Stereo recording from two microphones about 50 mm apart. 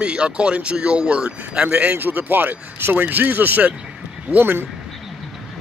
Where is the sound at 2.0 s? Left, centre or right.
Right.